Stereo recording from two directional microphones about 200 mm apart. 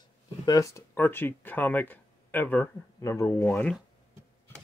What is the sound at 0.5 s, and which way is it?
Speech, 15° left (ahead or behind).